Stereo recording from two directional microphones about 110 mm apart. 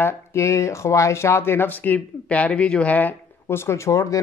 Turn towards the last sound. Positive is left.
turn(degrees=30)  # may be behind; listen again after turning